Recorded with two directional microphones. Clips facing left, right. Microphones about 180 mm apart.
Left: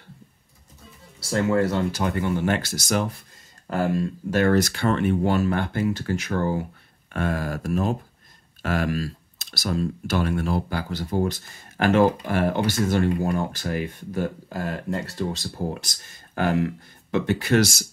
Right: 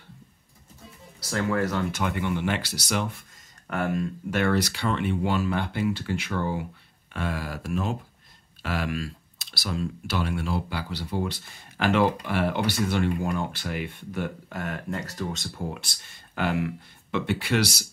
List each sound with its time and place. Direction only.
1.2 s speech: 30° left (ahead or behind); by 17.8 s 45° left (ahead or behind)